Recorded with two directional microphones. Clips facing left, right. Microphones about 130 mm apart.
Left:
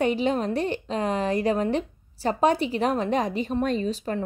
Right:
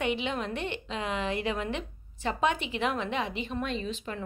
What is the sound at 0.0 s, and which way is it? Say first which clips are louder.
A woman's voice: left 7 dB; 40° left (ahead or behind).